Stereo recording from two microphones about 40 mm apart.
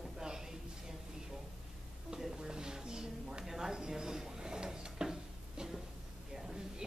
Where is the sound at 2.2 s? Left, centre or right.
Centre.